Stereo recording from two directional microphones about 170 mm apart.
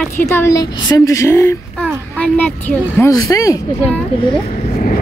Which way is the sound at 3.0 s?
20° left (ahead or behind).